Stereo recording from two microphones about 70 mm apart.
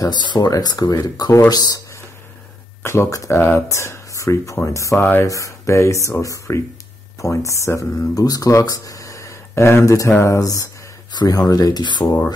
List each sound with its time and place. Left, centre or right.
0.0 s speech: left
0.5 s speech: left
2.8 s speech: left
8.8 s a sound: left
10.2 s speech: left